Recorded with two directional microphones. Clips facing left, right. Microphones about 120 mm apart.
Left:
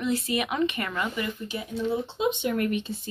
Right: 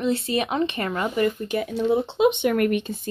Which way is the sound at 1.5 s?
65° right (ahead or behind).